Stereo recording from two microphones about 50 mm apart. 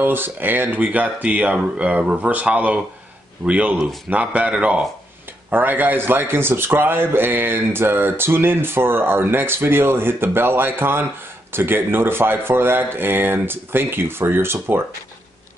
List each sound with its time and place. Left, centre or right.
0.0 s a man's voice: right
5.5 s a man's voice: right